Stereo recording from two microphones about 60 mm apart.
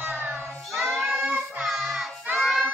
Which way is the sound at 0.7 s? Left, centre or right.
Centre.